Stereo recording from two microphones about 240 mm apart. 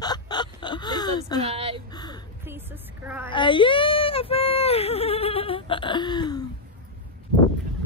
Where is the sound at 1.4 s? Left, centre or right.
Right.